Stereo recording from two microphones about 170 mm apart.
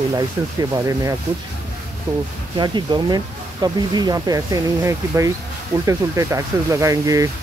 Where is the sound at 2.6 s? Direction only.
25° right (ahead or behind).